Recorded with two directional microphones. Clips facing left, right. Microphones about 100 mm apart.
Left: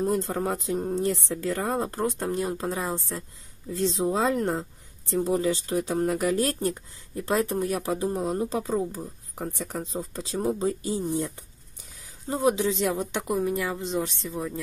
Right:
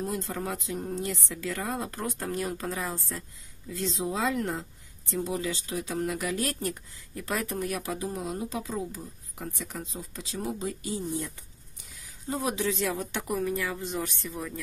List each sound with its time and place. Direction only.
0.0 s speech: 40° left (ahead or behind)
12.3 s speech: 25° left (ahead or behind)